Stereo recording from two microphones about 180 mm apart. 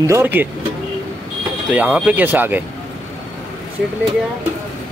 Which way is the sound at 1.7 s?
10° right (ahead or behind).